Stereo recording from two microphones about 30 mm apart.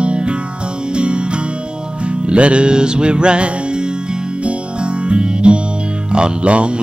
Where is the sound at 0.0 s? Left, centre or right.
Right.